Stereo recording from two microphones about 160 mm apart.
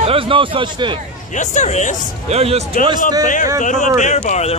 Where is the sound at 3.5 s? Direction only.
50° left (ahead or behind).